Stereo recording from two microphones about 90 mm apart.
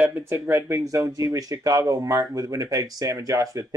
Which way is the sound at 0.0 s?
20° right (ahead or behind).